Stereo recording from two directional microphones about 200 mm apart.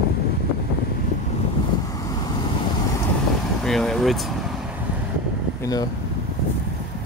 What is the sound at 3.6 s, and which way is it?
Speech, centre (ahead or behind).